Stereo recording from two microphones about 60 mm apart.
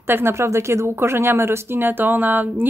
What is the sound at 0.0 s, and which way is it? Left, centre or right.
Speech, right.